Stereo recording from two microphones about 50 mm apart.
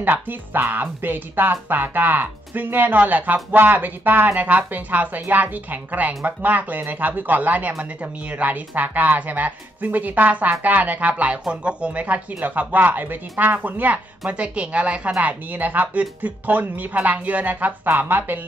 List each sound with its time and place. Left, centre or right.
0.0 s speech: right